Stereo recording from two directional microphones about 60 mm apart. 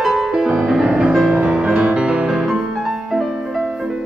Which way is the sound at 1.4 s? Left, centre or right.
Centre.